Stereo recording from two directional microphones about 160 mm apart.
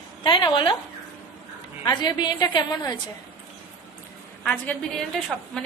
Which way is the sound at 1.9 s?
25° left (ahead or behind).